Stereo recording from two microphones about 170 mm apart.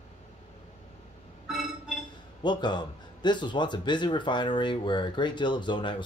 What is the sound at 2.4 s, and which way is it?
A man's voice, 25° left (ahead or behind).